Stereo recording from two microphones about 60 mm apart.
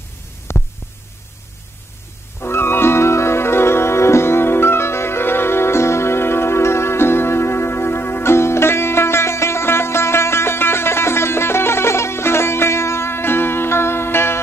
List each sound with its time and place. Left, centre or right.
0.5 s hum: left
2.4 s music: left